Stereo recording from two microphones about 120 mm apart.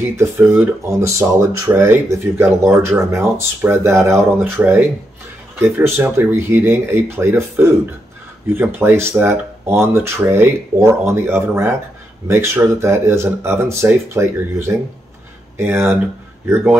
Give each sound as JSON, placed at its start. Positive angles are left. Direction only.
{"t": 0.0, "sound": "speech", "side_deg": -20}